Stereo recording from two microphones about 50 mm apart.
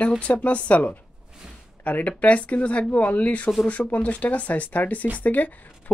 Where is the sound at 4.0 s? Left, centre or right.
Left.